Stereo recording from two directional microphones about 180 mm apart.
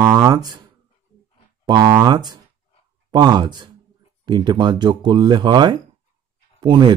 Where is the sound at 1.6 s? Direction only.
25° right (ahead or behind).